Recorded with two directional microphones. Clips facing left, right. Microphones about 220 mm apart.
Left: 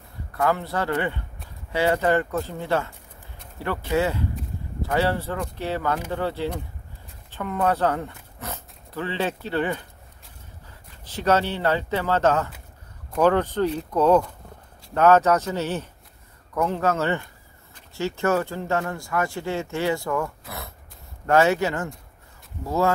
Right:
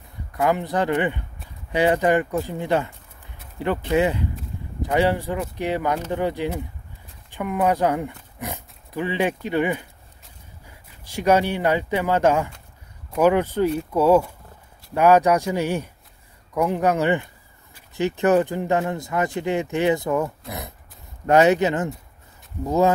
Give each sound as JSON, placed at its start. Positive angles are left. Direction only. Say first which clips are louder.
{"t": 0.3, "sound": "speech", "louder": "right 2 dB", "side_deg": -15}